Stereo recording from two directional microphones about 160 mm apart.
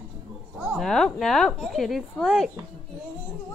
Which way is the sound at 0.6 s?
Centre (ahead or behind).